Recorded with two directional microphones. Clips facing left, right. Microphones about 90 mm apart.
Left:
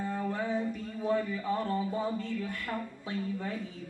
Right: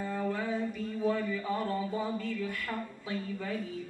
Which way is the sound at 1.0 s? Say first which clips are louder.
Left 1 dB; 20° left (ahead or behind).